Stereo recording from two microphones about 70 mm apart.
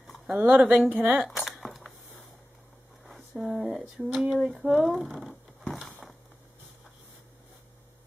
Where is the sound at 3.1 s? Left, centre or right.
Centre.